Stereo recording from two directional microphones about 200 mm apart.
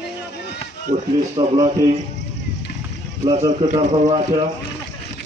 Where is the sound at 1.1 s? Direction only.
20° right (ahead or behind).